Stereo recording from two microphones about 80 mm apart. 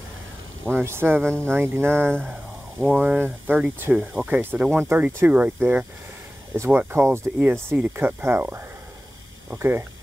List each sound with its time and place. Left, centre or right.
0.7 s speech: right
6.5 s speech: right